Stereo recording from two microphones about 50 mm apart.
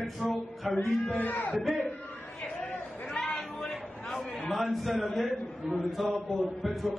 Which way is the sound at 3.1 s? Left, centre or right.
Centre.